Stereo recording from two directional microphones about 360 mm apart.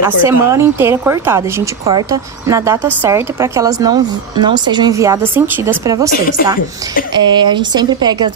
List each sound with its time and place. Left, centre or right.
0.0 s a woman's voice: centre
7.2 s a woman's voice: centre